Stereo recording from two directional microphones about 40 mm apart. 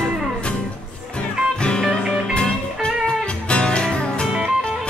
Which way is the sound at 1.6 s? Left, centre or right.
Left.